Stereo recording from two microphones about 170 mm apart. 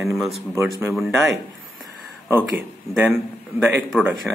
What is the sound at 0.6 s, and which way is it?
Speech, 15° right (ahead or behind).